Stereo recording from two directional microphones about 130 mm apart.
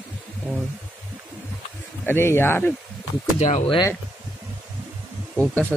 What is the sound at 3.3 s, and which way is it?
Speech, 60° left (ahead or behind).